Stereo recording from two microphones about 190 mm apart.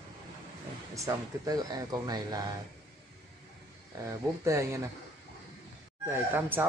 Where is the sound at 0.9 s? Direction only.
15° right (ahead or behind).